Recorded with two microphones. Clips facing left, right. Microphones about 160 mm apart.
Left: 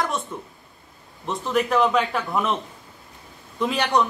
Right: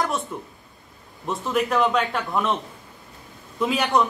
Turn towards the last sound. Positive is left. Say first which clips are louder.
# even
turn(degrees=0)  # may be behind; listen again after turning